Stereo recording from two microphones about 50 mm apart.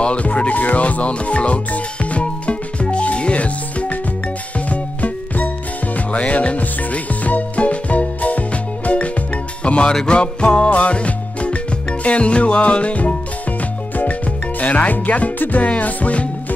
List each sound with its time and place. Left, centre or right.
0.0 s music: left